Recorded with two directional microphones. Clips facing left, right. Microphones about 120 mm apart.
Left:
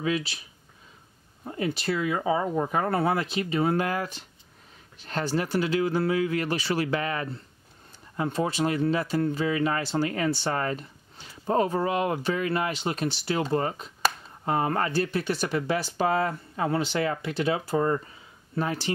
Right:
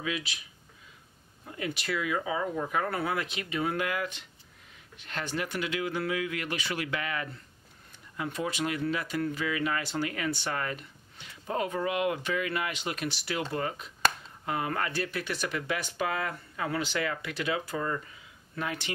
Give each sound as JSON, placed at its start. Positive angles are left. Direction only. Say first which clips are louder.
{"t": 0.0, "sound": "speech", "louder": "left 7 dB", "side_deg": 35}
{"t": 1.4, "sound": "speech", "louder": "left 6 dB", "side_deg": 35}